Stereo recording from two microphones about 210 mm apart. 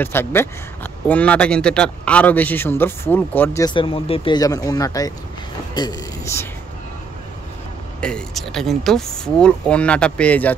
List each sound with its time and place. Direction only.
0.0 s speech: 10° left (ahead or behind)
8.0 s speech: 5° left (ahead or behind)